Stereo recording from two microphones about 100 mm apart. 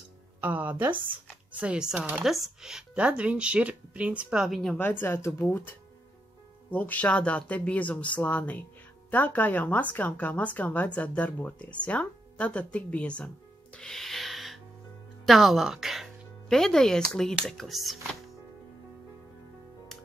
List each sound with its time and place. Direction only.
0.4 s speech: 15° right (ahead or behind)
2.2 s speech: centre (ahead or behind)
4.7 s speech: 20° left (ahead or behind)
13.7 s music: 5° left (ahead or behind)
15.2 s speech: centre (ahead or behind)